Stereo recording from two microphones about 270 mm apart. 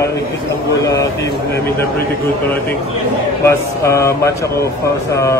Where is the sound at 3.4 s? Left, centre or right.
Centre.